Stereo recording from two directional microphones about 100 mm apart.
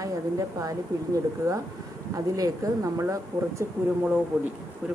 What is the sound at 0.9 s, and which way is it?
Speech, 35° right (ahead or behind).